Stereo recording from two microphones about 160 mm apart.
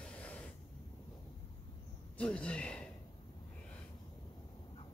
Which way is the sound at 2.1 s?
10° left (ahead or behind).